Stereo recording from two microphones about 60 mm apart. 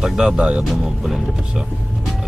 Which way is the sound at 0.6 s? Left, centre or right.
Centre.